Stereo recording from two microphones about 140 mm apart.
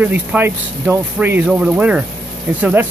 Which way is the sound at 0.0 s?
15° right (ahead or behind).